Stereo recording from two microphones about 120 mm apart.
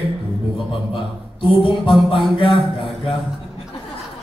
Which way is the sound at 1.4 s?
50° left (ahead or behind).